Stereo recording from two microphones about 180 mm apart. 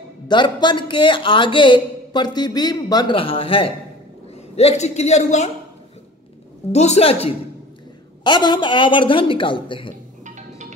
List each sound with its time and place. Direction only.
0.3 s a woman's voice: 25° left (ahead or behind)
6.7 s a woman's voice: 35° left (ahead or behind)
10.2 s music: 40° right (ahead or behind)